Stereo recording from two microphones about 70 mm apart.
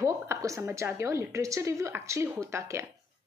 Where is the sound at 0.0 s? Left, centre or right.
Right.